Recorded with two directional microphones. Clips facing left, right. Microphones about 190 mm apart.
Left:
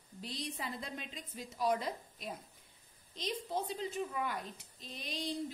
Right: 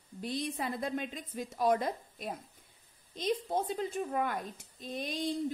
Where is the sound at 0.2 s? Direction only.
55° right (ahead or behind).